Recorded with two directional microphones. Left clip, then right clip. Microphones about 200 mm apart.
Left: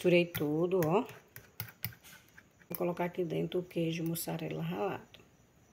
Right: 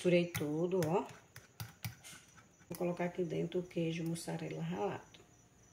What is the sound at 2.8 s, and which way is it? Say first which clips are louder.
Speech: left 3 dB; 35° left (ahead or behind).